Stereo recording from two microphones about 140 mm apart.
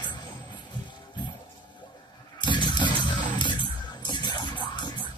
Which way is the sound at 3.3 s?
35° left (ahead or behind).